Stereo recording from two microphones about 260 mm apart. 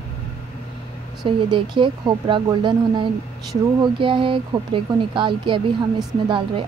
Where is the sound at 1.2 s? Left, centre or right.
Centre.